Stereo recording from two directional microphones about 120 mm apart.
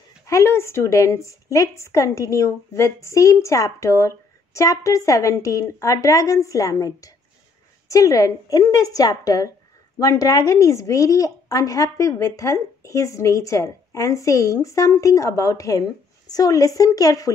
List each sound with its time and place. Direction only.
0.3 s speech: 25° left (ahead or behind)